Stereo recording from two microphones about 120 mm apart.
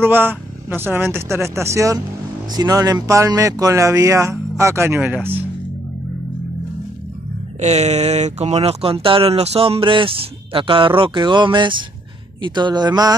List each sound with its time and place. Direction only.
0.0 s speech: 15° right (ahead or behind)
7.6 s speech: 70° right (ahead or behind); by 13.1 s 35° right (ahead or behind)